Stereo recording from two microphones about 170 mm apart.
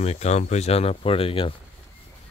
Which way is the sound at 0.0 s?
40° left (ahead or behind).